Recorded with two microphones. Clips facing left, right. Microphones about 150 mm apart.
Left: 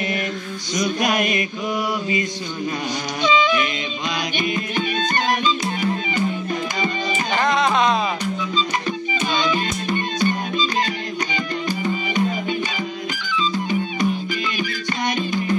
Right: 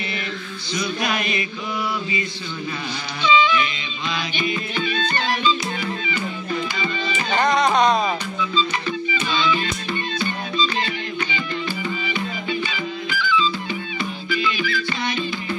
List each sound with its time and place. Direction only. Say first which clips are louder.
0.7 s a sound: left 4 dB; 45° left (ahead or behind)
3.3 s music: right 1 dB; 45° left (ahead or behind)
7.3 s music: right 1 dB; centre (ahead or behind)
9.3 s music: even; 45° left (ahead or behind)